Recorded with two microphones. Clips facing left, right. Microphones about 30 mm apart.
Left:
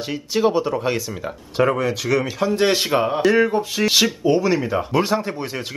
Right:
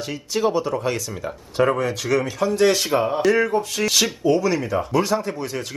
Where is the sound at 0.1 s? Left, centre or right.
Centre.